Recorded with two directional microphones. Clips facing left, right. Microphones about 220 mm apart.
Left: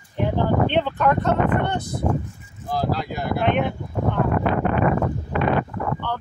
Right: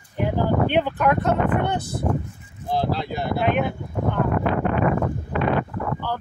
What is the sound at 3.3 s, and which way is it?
Speech, 5° right (ahead or behind).